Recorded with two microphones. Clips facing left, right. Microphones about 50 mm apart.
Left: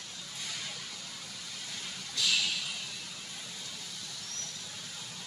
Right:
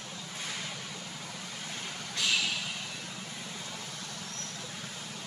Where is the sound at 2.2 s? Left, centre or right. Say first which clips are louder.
Right 1 dB; right.